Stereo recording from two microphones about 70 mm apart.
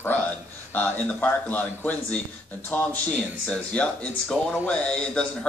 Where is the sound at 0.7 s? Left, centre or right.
Left.